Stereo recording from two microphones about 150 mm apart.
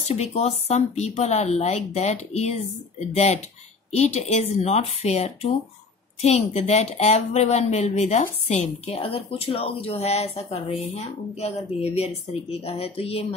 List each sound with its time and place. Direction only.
0.1 s a woman's voice: 45° left (ahead or behind)